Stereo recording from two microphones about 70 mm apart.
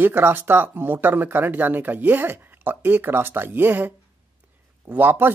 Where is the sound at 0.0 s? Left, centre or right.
Right.